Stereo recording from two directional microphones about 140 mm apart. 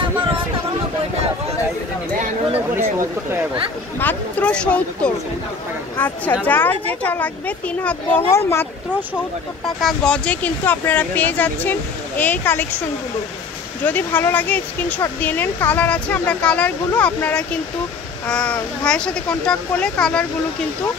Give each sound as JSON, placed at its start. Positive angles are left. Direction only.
{"t": 2.7, "sound": "speech", "side_deg": -15}
{"t": 4.0, "sound": "speech", "side_deg": 10}
{"t": 9.8, "sound": "speech", "side_deg": 5}
{"t": 13.8, "sound": "speech", "side_deg": 10}